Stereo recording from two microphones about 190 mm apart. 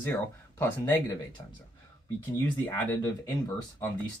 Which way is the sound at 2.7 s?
15° left (ahead or behind).